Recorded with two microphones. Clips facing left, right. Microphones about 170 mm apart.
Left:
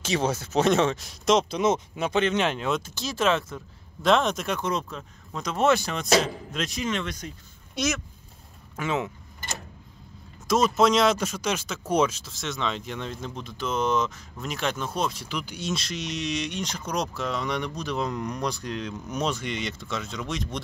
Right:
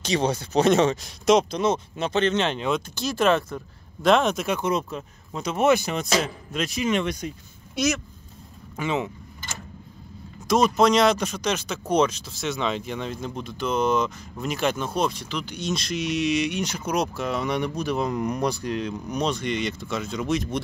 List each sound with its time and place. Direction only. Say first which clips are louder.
0.0 s speech: right 2 dB; 5° left (ahead or behind)
1.6 s speech: even; 15° left (ahead or behind); by 5.6 s 5° right (ahead or behind)
5.6 s speech: right 2 dB; 15° right (ahead or behind)
6.5 s speech: right 7 dB; 5° right (ahead or behind)
7.7 s speech: right 3 dB; centre (ahead or behind)
10.5 s speech: right 2 dB; centre (ahead or behind)